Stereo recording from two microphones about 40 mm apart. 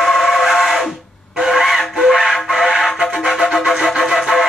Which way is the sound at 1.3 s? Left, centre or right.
Centre.